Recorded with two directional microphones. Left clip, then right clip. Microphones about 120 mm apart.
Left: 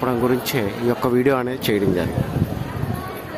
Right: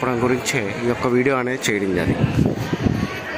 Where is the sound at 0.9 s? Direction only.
25° left (ahead or behind).